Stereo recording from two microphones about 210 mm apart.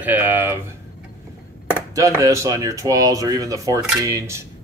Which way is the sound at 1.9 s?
15° right (ahead or behind).